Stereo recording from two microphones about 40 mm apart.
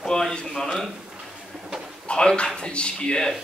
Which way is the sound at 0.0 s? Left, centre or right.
Centre.